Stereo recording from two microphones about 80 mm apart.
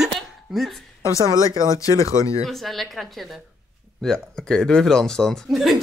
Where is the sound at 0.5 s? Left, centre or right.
Centre.